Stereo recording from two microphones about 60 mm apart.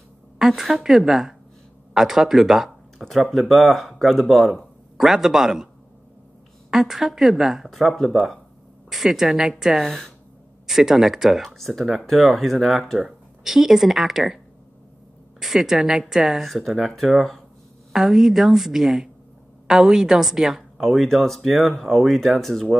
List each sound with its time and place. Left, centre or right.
0.4 s speech: centre
6.7 s a woman's voice: centre
15.4 s a woman's voice: centre